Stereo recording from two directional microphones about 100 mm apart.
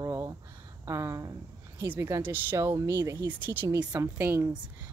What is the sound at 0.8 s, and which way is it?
Speech, 30° right (ahead or behind).